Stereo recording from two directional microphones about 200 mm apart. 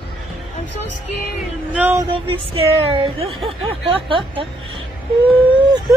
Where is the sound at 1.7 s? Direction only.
10° right (ahead or behind).